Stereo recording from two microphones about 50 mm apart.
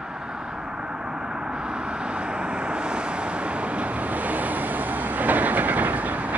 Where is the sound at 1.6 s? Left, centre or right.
Centre.